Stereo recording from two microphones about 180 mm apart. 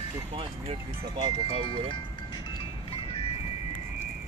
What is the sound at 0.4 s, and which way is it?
Speech, 30° right (ahead or behind).